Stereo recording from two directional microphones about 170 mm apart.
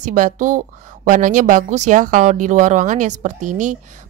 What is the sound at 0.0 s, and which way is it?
Speech, 50° right (ahead or behind).